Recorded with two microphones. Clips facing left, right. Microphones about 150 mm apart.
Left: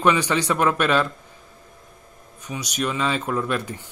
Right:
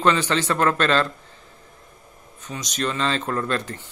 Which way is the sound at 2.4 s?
10° left (ahead or behind).